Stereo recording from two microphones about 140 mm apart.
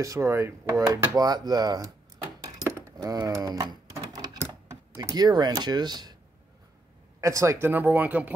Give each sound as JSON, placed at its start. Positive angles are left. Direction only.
{"t": 0.0, "sound": "speech", "side_deg": -20}
{"t": 3.9, "sound": "a sound", "side_deg": -25}
{"t": 7.2, "sound": "speech", "side_deg": -20}